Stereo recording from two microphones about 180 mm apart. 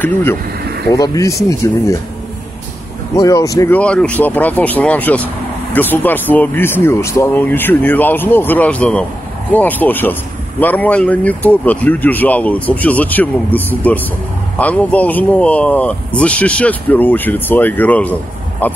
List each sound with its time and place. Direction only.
0.0 s speech: 10° left (ahead or behind)
3.2 s speech: 20° left (ahead or behind)